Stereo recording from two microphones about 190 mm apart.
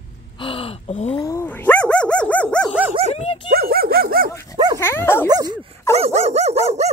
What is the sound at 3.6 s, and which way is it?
Dog, 55° right (ahead or behind).